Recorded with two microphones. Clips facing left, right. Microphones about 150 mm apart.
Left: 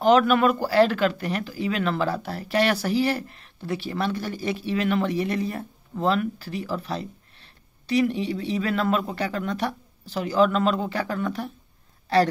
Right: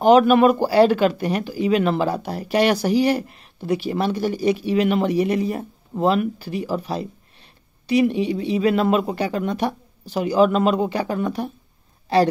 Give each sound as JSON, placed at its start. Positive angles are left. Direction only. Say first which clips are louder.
{"t": 0.0, "sound": "speech", "louder": "right 5 dB", "side_deg": -15}